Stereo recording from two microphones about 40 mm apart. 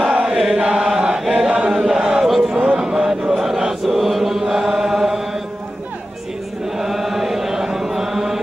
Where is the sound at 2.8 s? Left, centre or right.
Centre.